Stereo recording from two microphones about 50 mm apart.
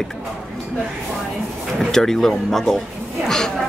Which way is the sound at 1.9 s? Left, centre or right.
Centre.